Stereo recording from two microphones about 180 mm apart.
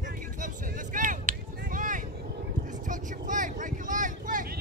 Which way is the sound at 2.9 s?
45° right (ahead or behind).